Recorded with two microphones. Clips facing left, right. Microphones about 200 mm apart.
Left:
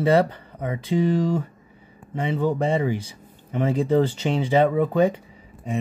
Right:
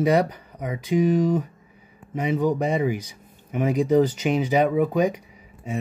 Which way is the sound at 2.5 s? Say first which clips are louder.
Even; 20° right (ahead or behind).